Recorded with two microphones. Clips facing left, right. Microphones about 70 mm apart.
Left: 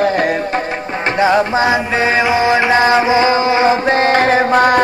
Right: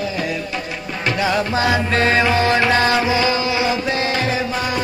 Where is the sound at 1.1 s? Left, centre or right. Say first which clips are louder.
Left 7 dB; left.